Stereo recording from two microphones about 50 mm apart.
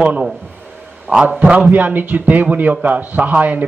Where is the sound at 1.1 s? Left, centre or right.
Centre.